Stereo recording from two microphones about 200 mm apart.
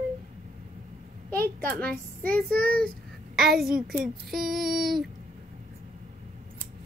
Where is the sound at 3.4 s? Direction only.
50° right (ahead or behind).